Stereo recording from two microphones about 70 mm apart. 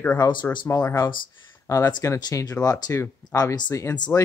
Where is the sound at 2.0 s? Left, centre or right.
Left.